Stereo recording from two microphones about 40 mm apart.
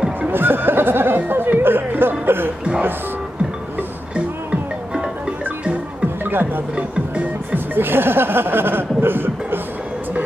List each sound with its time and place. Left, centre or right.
0.3 s chatter: right
7.5 s music: right